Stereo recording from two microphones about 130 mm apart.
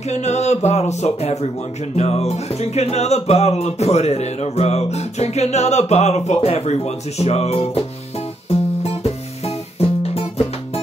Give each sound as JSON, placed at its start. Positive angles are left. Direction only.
{"t": 0.1, "sound": "music", "side_deg": 60}